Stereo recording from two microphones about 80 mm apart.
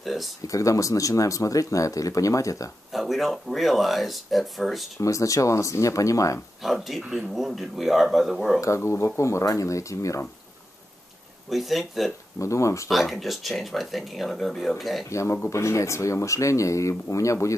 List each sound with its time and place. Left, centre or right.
0.0 s speech: centre
0.5 s speech: left
2.9 s speech: centre
5.0 s speech: left
6.6 s speech: centre
8.5 s speech: left
11.5 s speech: centre
12.4 s speech: left
12.9 s speech: centre
15.0 s speech: left